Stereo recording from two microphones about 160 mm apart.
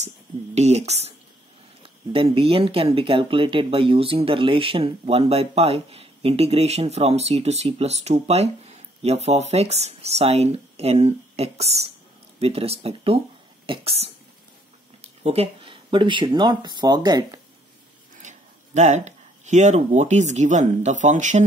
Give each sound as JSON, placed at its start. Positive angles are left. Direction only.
{"t": 0.6, "sound": "speech", "side_deg": -45}
{"t": 15.2, "sound": "speech", "side_deg": -35}
{"t": 18.2, "sound": "speech", "side_deg": -45}